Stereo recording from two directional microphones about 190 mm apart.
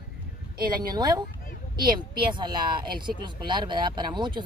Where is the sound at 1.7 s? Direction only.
50° right (ahead or behind).